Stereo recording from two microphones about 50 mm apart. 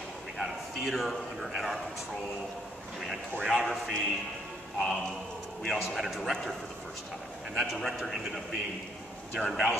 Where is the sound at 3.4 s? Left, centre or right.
Centre.